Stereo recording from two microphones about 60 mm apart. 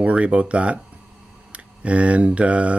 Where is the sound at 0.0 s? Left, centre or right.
Right.